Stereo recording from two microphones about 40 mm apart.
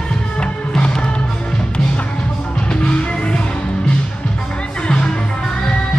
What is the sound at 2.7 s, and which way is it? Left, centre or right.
Music, left.